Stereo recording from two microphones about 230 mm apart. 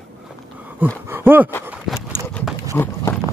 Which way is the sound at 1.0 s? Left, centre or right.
Centre.